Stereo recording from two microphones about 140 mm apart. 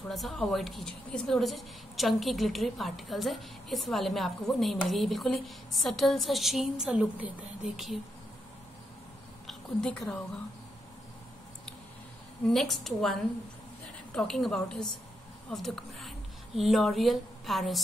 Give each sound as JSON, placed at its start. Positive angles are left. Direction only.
{"t": 0.1, "sound": "a woman's voice", "side_deg": 0}
{"t": 9.5, "sound": "a woman's voice", "side_deg": 5}
{"t": 12.4, "sound": "a woman's voice", "side_deg": 0}